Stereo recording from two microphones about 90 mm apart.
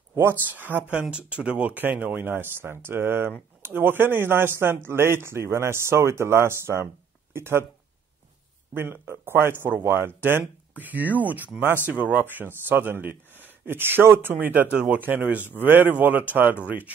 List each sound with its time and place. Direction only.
0.1 s speech: 30° right (ahead or behind)
8.7 s speech: 25° right (ahead or behind)